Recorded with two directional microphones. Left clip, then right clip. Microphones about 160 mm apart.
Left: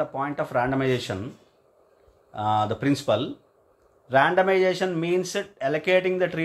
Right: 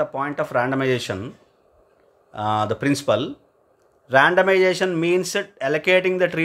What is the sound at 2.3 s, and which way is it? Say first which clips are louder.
Speech: right 2 dB; 30° right (ahead or behind).